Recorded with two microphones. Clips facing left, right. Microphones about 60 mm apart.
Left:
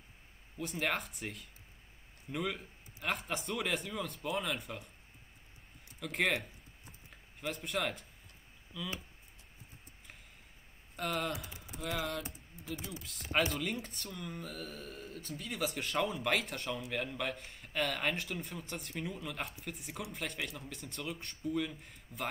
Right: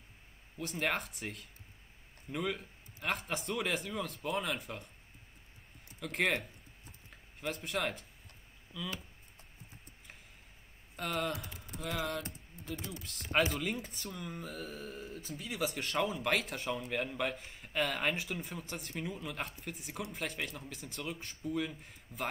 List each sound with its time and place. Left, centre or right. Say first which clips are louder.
0.6 s speech: right 1 dB; centre
5.9 s speech: even; centre
11.0 s speech: even; centre